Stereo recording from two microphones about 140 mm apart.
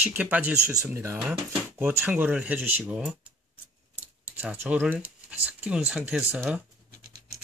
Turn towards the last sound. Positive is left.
turn(degrees=-5)  # may be behind; listen again after turning